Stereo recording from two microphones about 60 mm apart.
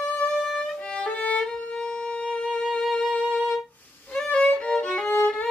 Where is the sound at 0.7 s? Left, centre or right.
Centre.